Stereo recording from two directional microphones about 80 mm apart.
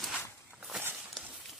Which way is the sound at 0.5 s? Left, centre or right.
Centre.